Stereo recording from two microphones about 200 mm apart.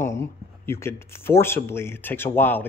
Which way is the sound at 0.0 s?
10° left (ahead or behind).